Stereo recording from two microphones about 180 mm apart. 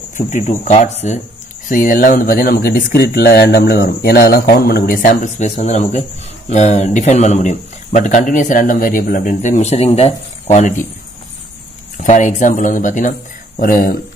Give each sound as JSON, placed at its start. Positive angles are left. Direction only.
{"t": 0.3, "sound": "speech", "side_deg": 45}
{"t": 1.7, "sound": "speech", "side_deg": 50}
{"t": 12.0, "sound": "speech", "side_deg": 40}